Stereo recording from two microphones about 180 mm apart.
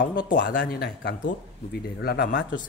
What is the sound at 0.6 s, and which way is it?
A man's voice, 70° left (ahead or behind).